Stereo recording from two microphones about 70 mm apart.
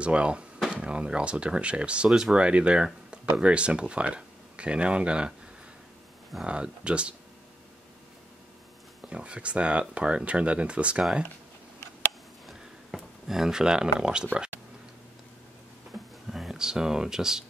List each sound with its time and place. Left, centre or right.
0.0 s speech: centre
6.4 s speech: centre
9.1 s speech: centre
12.4 s a sound: centre
16.3 s speech: centre